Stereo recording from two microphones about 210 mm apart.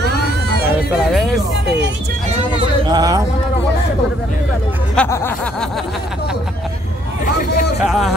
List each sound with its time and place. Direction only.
1.1 s speech: centre (ahead or behind)
2.9 s a sound: 20° right (ahead or behind)
4.9 s speech: 10° left (ahead or behind)
7.8 s speech: centre (ahead or behind)